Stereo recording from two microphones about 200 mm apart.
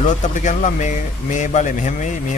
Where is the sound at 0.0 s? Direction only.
40° left (ahead or behind).